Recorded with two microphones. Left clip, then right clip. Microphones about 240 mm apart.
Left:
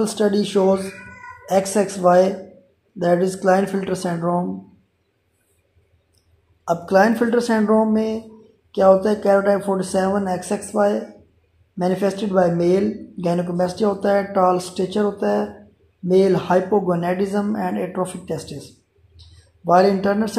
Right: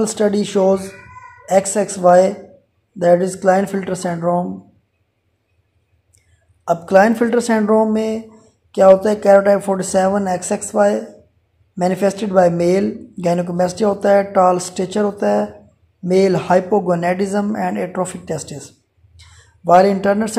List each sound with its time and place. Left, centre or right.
0.0 s a woman's voice: centre
6.6 s speech: centre